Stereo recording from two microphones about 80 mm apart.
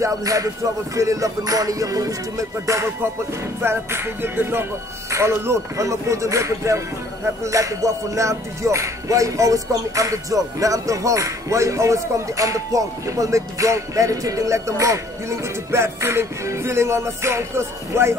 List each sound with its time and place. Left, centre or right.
0.0 s music: right